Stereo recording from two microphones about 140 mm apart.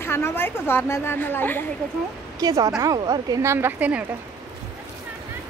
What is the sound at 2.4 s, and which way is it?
A woman's voice, 25° right (ahead or behind).